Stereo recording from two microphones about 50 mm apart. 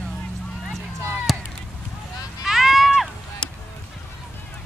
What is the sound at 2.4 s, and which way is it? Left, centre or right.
Run, centre.